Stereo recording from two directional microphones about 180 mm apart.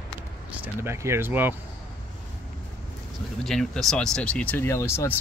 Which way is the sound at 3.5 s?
Centre (ahead or behind).